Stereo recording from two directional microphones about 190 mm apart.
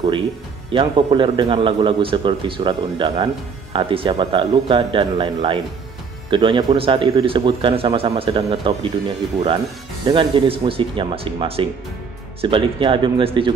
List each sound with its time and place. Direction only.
0.7 s a man's voice: 25° right (ahead or behind)
10.0 s a man's voice: 25° right (ahead or behind)